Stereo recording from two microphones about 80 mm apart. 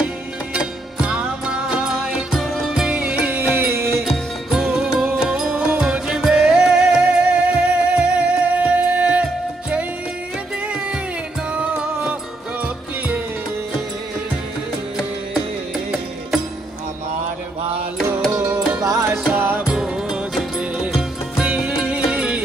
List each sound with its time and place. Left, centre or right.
0.0 s music: centre; by 3.9 s right
4.0 s music: centre
11.5 s music: centre
18.8 s music: right
19.3 s music: right
19.6 s music: centre